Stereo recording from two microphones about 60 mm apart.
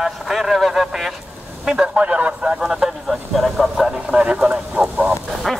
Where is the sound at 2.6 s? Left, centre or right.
Centre.